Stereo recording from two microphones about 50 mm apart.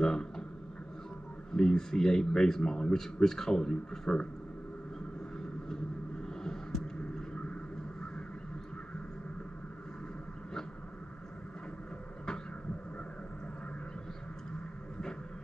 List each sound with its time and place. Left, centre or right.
0.0 s a sound: centre
1.6 s speech: centre
6.2 s vehicle: centre